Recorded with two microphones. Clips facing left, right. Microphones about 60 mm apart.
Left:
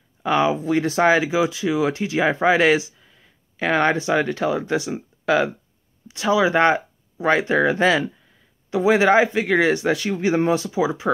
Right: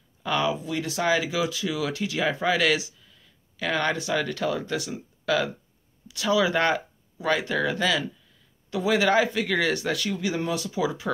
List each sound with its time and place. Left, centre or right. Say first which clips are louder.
0.2 s a man's voice: left 6 dB; left